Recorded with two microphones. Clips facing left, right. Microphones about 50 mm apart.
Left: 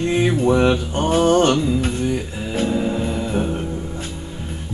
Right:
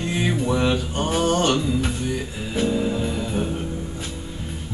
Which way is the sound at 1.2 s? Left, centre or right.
Left.